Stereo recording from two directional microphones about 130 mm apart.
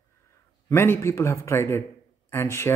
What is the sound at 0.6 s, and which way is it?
A man's voice, 15° left (ahead or behind).